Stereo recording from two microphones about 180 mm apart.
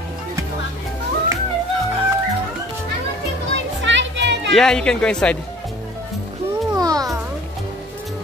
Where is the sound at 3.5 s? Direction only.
85° right.